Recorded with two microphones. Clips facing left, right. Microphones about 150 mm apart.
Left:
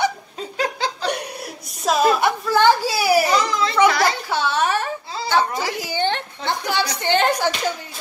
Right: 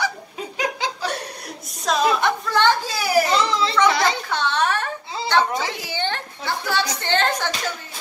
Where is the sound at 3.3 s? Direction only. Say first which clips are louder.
Left 1 dB; 30° right (ahead or behind).